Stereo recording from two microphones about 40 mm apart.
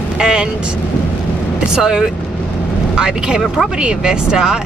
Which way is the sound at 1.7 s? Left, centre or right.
Centre.